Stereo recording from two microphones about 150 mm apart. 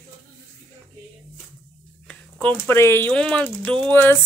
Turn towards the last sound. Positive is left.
turn(degrees=10)  # may be behind; listen again after turning